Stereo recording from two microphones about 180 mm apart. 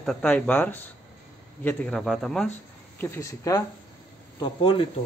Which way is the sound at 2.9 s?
15° left (ahead or behind).